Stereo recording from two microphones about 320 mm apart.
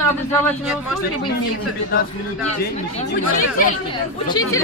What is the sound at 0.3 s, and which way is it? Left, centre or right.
Speech, centre.